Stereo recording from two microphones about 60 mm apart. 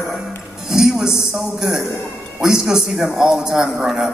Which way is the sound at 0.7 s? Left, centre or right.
Centre.